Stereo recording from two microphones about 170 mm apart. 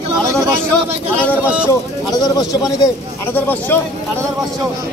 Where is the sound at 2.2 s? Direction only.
25° left (ahead or behind).